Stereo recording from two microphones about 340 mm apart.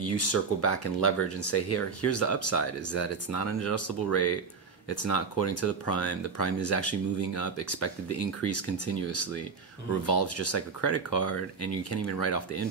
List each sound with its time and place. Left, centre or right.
0.0 s speech: left